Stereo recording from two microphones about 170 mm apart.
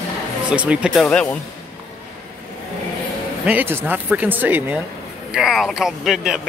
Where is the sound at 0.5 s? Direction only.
5° right (ahead or behind).